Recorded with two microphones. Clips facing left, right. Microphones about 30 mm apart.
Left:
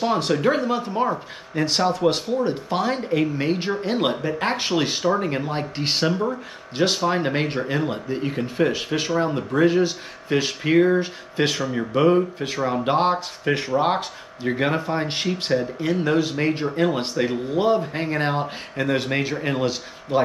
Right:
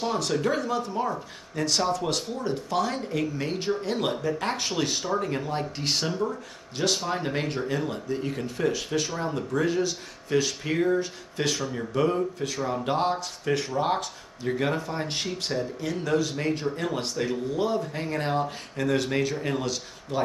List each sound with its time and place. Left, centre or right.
0.0 s speech: left